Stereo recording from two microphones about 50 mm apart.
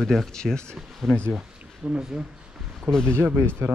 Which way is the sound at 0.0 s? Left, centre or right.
Centre.